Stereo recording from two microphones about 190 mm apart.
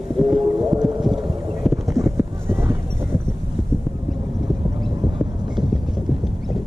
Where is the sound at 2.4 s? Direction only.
10° right (ahead or behind).